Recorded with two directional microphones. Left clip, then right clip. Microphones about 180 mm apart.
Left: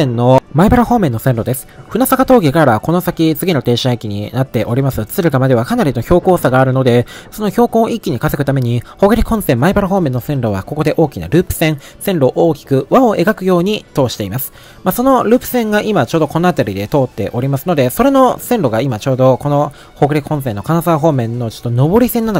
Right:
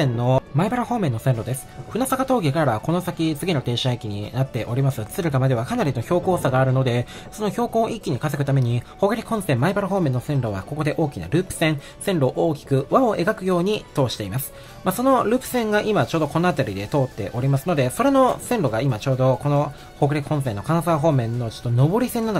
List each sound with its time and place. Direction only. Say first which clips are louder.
0.0 s speech: left 10 dB; 35° left (ahead or behind)